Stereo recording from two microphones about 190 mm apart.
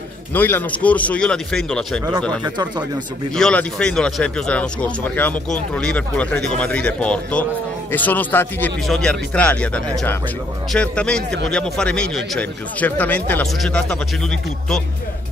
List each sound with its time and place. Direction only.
0.3 s speech: 10° left (ahead or behind)
2.4 s speech: 20° right (ahead or behind)
3.3 s speech: 5° left (ahead or behind)